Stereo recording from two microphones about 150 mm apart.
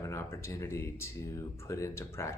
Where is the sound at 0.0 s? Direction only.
20° left (ahead or behind).